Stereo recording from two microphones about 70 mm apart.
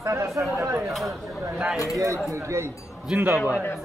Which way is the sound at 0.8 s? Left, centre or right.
Centre.